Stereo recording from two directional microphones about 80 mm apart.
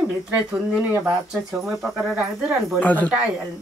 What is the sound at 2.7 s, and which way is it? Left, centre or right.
Speech, centre.